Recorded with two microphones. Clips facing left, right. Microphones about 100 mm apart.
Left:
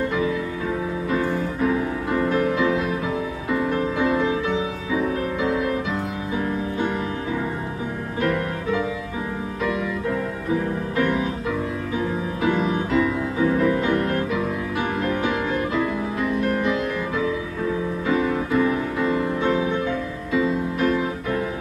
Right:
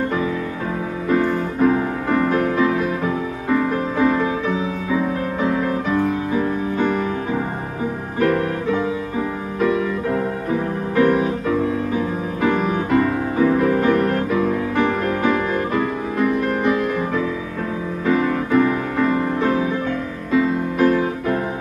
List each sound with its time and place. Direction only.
1.0 s music: 45° right (ahead or behind)
2.2 s music: 30° right (ahead or behind)
11.0 s music: 40° right (ahead or behind)
12.4 s music: 50° right (ahead or behind)
13.5 s music: 40° right (ahead or behind)
18.6 s music: 45° right (ahead or behind)